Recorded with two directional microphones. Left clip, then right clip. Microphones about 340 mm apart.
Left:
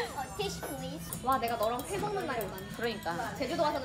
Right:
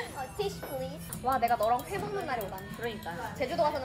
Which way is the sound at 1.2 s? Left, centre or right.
Centre.